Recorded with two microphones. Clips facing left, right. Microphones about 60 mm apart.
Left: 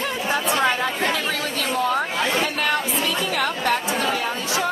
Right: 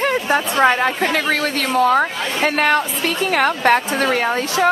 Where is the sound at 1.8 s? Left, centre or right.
Right.